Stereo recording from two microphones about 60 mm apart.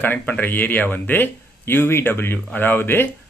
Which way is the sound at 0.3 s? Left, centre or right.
Left.